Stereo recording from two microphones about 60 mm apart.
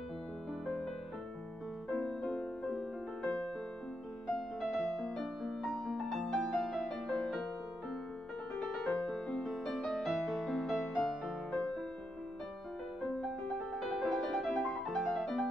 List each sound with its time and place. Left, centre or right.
1.9 s music: centre
8.5 s music: centre
13.0 s music: centre